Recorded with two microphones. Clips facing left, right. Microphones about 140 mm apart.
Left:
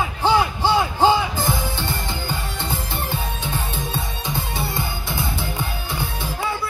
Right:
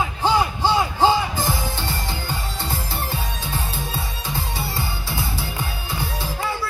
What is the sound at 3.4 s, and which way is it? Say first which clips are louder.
Music: left 2 dB; 10° right (ahead or behind).